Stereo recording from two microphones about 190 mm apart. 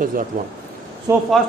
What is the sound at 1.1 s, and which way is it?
Speech, 15° right (ahead or behind).